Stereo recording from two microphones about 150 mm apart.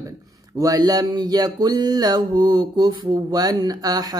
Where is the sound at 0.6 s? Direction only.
25° right (ahead or behind).